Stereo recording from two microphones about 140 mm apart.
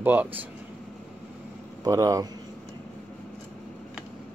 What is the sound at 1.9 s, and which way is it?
Speech, 25° right (ahead or behind).